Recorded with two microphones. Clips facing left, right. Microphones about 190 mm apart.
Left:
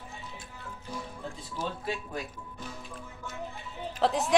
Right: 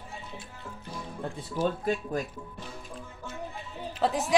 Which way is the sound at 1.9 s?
45° right (ahead or behind).